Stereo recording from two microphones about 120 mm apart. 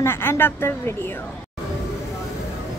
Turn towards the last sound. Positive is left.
turn(degrees=20)  # may be behind; listen again after turning